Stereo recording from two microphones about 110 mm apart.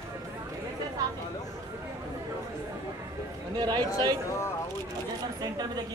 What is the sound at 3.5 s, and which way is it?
Speech, 40° right (ahead or behind).